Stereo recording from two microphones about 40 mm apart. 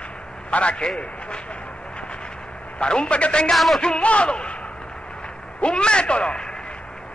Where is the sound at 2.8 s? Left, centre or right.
Left.